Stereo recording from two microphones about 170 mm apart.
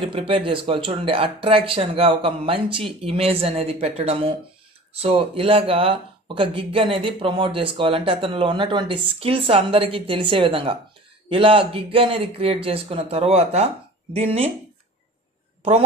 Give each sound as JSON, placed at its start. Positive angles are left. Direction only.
{"t": 0.1, "sound": "speech", "side_deg": -30}